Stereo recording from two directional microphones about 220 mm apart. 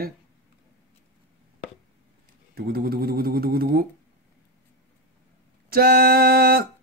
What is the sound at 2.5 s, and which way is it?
Speech, 40° right (ahead or behind).